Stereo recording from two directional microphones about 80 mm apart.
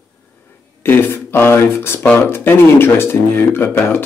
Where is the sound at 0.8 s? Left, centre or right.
Left.